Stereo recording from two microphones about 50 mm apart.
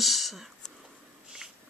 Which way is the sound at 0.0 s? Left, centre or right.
Centre.